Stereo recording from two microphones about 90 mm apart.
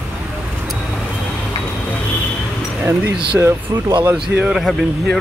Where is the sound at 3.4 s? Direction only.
25° right (ahead or behind).